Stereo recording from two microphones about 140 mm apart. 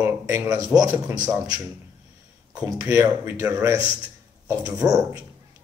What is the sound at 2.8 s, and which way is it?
A man's voice, 20° right (ahead or behind).